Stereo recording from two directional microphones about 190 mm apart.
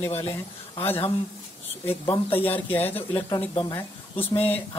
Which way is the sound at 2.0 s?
25° left (ahead or behind).